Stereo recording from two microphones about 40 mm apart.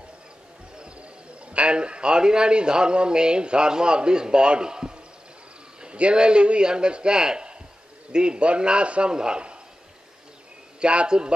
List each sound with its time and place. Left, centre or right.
1.5 s a man's voice: right
10.8 s a man's voice: right